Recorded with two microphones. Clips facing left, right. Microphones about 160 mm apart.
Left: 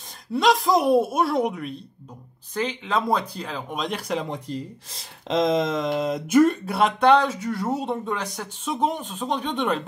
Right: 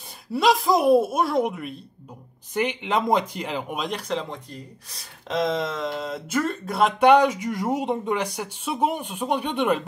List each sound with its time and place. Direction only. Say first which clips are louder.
0.3 s a woman's voice: even; 5° right (ahead or behind)
2.5 s speech: right 1 dB; 15° right (ahead or behind)
3.7 s a woman's voice: left 4 dB; 5° right (ahead or behind)
4.1 s speech: left 2 dB; 15° left (ahead or behind)
7.0 s speech: right 3 dB; 15° right (ahead or behind)